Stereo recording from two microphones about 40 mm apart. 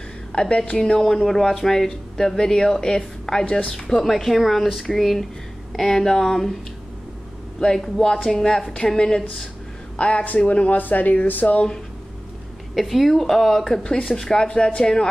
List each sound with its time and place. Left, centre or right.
0.3 s a woman's voice: left
0.9 s speech: centre
3.4 s speech: left
3.9 s speech: centre
7.6 s speech: centre
9.9 s a man's voice: left
10.8 s speech: left
12.7 s speech: centre
13.8 s speech: left